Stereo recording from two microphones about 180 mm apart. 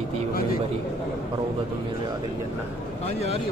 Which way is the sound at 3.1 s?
35° left (ahead or behind).